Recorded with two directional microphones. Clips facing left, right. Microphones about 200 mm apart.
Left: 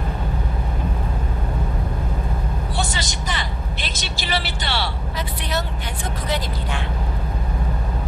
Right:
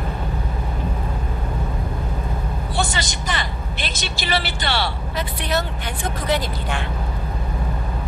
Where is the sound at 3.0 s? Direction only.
55° right (ahead or behind).